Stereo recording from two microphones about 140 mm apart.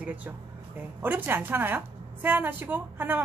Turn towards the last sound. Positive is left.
turn(degrees=-15)  # may be behind; listen again after turning